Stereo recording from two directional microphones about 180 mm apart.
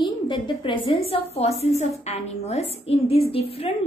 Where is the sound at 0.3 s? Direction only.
30° left (ahead or behind).